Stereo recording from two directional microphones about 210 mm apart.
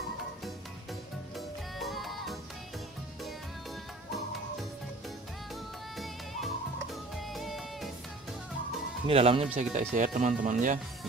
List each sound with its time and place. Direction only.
1.3 s music: centre (ahead or behind)
5.9 s music: centre (ahead or behind)
9.0 s speech: 25° right (ahead or behind)